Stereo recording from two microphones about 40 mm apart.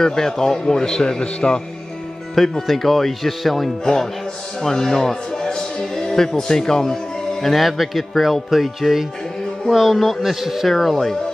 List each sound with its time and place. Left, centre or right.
0.0 s a man's voice: centre
2.6 s speech: centre
3.8 s a man's voice: centre
5.5 s music: centre
7.4 s speech: centre